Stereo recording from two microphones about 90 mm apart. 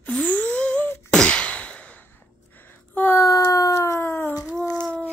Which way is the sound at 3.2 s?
40° left (ahead or behind).